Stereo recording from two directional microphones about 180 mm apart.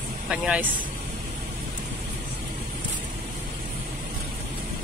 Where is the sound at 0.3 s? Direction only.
5° right (ahead or behind).